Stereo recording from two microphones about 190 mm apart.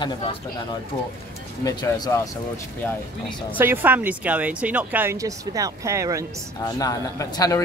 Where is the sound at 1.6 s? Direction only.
20° left (ahead or behind).